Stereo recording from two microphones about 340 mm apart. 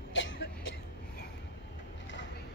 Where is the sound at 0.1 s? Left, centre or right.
Left.